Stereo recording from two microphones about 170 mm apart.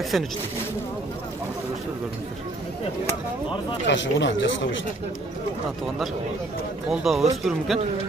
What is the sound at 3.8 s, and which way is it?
Speech, 90° left.